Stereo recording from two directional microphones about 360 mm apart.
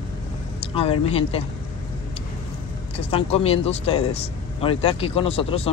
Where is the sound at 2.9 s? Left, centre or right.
Centre.